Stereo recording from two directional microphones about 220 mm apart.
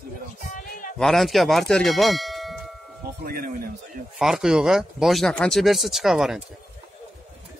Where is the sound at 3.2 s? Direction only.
40° right (ahead or behind).